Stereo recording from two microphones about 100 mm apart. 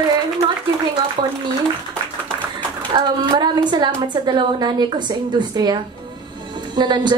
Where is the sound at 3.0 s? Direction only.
50° right (ahead or behind).